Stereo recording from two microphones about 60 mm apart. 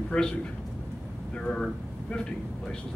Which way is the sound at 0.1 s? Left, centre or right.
Centre.